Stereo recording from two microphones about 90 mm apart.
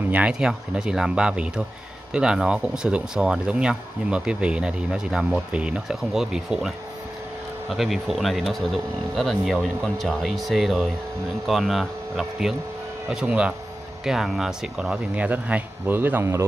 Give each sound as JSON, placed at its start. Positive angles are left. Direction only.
{"t": 0.1, "sound": "speech", "side_deg": -10}
{"t": 7.7, "sound": "speech", "side_deg": -5}
{"t": 14.0, "sound": "speech", "side_deg": -5}